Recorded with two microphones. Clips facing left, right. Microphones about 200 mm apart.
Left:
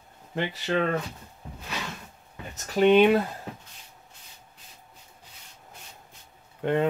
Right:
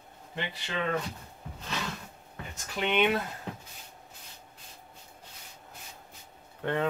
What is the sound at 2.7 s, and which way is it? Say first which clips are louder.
Speech: left 9 dB; 35° left (ahead or behind).